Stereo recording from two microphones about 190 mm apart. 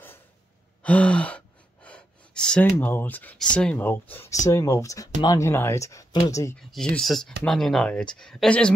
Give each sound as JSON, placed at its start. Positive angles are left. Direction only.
{"t": 0.8, "sound": "sigh", "side_deg": 5}
{"t": 2.6, "sound": "speech", "side_deg": 10}
{"t": 6.6, "sound": "speech", "side_deg": 5}